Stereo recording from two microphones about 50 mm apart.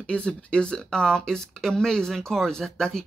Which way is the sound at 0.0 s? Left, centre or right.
Left.